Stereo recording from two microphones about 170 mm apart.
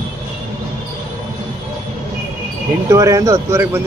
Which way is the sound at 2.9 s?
20° right (ahead or behind).